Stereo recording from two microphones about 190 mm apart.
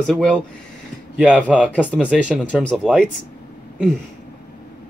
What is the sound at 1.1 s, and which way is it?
Speech, 5° right (ahead or behind).